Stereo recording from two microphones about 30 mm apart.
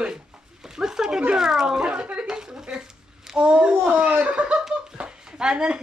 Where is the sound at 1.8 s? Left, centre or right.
Right.